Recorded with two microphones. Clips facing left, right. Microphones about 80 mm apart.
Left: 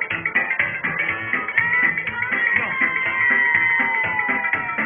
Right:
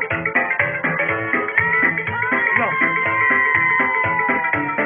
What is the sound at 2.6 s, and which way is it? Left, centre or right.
Music, right.